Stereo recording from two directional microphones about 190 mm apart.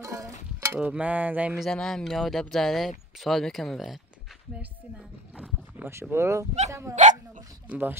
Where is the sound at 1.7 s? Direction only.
5° left (ahead or behind); by 6.5 s 15° right (ahead or behind).